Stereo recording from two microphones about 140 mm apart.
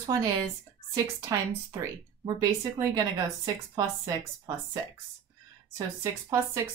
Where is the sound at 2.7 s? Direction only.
25° right (ahead or behind).